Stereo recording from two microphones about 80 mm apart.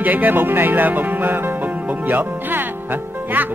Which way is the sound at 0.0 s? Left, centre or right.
Right.